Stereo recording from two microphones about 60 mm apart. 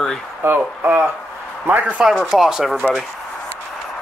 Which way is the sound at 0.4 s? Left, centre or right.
Right.